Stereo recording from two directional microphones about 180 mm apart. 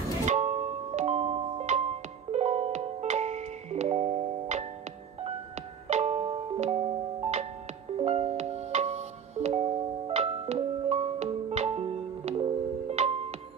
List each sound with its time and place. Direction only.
0.2 s music: 40° right (ahead or behind)
5.9 s music: 35° right (ahead or behind)